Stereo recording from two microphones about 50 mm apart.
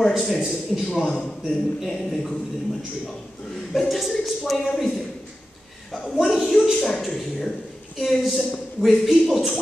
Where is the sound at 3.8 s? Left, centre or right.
Centre.